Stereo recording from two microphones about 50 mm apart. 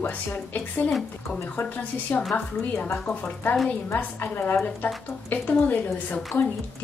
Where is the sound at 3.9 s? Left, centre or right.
Left.